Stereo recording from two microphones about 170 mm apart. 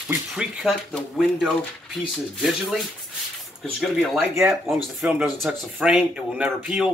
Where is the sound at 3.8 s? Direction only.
Centre (ahead or behind).